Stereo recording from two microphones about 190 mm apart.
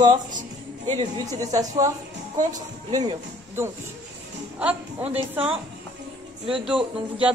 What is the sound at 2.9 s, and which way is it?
Speech, 15° right (ahead or behind).